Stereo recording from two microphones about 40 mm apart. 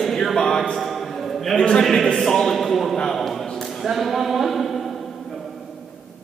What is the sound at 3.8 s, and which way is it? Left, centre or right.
A capella, centre.